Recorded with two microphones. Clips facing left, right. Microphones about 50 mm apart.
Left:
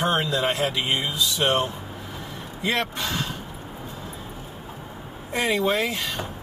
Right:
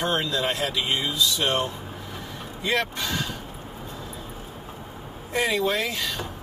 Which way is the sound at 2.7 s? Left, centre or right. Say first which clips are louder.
Right 2 dB; centre.